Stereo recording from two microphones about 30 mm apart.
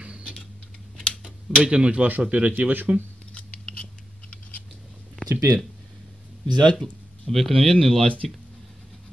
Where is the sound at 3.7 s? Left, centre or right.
Left.